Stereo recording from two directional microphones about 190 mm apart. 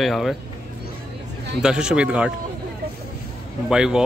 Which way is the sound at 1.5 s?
5° right (ahead or behind).